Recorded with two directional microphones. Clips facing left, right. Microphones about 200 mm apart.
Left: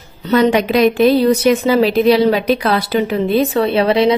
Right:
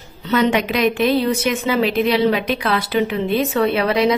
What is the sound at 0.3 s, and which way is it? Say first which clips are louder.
A woman's voice: left 5 dB; 35° left (ahead or behind).